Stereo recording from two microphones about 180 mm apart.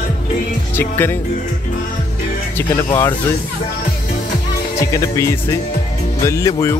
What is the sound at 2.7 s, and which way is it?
Speech, 25° left (ahead or behind).